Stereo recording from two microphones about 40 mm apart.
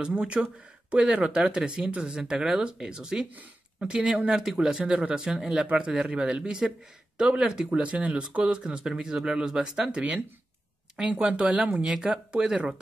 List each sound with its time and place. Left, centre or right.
0.0 s speech: right
5.7 s speech: right
8.5 s speech: right
9.8 s speech: right